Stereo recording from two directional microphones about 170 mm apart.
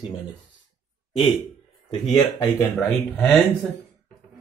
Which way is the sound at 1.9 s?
25° left (ahead or behind).